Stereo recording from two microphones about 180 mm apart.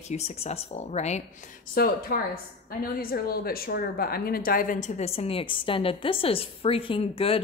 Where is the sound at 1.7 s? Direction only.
55° left (ahead or behind); by 7.4 s 30° left (ahead or behind).